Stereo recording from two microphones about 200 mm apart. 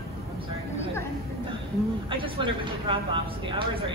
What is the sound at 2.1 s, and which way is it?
Speech, 25° right (ahead or behind).